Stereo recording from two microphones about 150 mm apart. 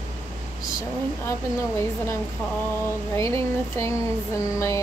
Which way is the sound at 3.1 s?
20° left (ahead or behind).